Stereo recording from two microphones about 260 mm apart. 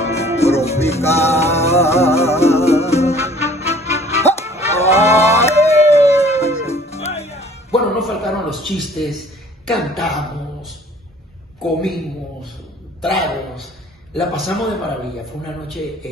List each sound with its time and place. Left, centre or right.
0.0 s music: left
7.7 s a sound: centre
9.7 s speech: centre
13.0 s a man's voice: centre